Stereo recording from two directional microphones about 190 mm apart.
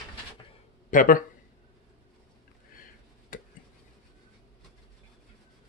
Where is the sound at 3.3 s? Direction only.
50° left (ahead or behind).